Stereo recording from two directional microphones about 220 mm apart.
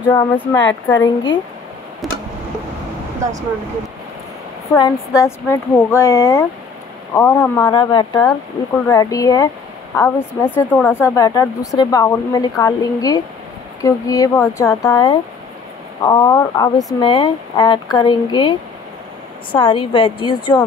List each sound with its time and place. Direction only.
0.1 s speech: 15° left (ahead or behind)
2.0 s tick-tock: centre (ahead or behind)
4.7 s speech: 15° left (ahead or behind)
19.6 s a woman's voice: 25° left (ahead or behind)